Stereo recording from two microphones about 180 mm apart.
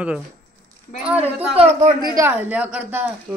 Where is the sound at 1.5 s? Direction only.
35° right (ahead or behind).